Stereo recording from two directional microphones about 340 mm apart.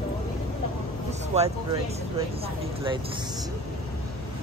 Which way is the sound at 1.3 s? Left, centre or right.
Centre.